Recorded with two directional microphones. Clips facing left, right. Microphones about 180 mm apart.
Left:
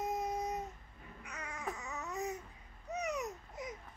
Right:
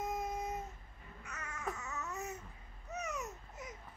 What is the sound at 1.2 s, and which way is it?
Babbling, 15° left (ahead or behind).